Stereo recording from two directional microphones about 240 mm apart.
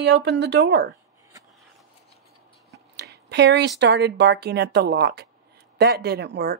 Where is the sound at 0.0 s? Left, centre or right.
Right.